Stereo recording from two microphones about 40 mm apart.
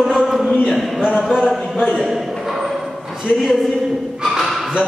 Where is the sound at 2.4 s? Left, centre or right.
Centre.